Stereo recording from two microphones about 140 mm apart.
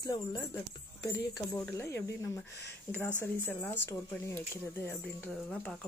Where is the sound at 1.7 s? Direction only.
20° left (ahead or behind).